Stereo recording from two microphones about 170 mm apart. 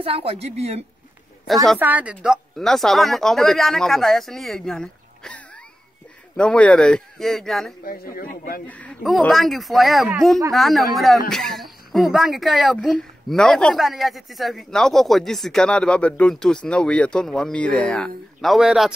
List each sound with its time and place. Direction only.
0.0 s a woman's voice: 35° right (ahead or behind)
1.5 s speech: centre (ahead or behind)
7.8 s speech: 60° left (ahead or behind)
8.6 s speech: 10° left (ahead or behind)